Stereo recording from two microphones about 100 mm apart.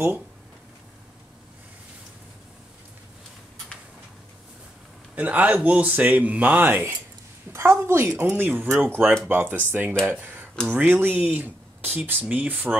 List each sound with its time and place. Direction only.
5.1 s a woman's voice: 15° right (ahead or behind)